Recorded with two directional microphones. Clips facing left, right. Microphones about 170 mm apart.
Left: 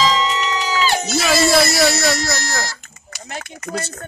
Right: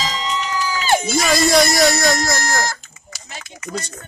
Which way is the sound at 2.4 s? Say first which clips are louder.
Right 4 dB; 50° right (ahead or behind).